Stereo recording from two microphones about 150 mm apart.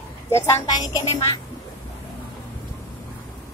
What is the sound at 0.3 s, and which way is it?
Speech, 20° left (ahead or behind).